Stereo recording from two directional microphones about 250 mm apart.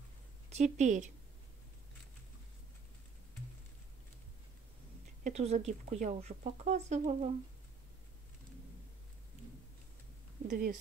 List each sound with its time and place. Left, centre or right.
0.5 s speech: right
5.2 s speech: right
10.5 s a woman's voice: right